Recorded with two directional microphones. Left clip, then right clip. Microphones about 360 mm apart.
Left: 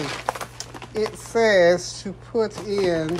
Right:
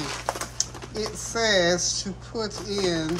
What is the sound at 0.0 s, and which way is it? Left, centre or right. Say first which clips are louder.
Speech: left 3 dB; left.